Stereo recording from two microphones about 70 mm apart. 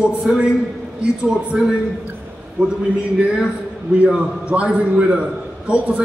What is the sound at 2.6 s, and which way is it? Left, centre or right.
A man's voice, centre.